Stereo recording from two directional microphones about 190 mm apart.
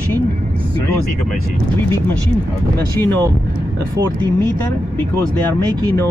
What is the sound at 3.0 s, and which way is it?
Speech, 10° left (ahead or behind).